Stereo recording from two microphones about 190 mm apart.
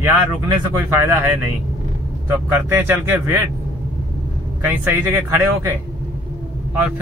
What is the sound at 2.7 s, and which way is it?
Speech, 10° right (ahead or behind).